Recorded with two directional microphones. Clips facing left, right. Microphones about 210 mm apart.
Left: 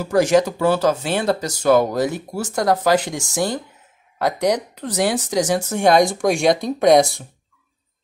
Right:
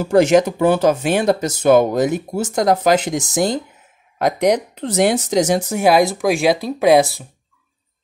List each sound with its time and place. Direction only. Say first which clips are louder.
0.0 s speech: right 3 dB; 25° right (ahead or behind); by 7.2 s centre (ahead or behind)